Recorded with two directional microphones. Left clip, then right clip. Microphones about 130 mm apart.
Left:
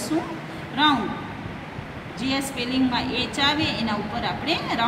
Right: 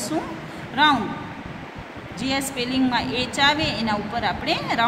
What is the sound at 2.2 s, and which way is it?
A woman's voice, 90° right.